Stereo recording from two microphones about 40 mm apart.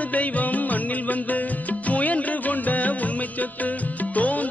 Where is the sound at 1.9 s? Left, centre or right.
Left.